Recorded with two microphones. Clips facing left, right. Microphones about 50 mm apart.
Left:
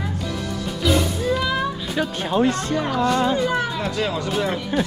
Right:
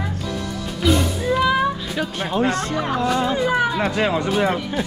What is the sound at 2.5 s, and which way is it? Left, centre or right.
Speech, right.